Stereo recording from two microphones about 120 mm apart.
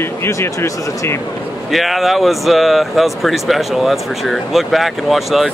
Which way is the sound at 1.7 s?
Centre (ahead or behind).